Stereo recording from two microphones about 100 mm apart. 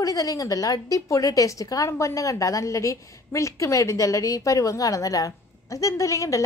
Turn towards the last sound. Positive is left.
turn(degrees=30)  # may be behind; listen again after turning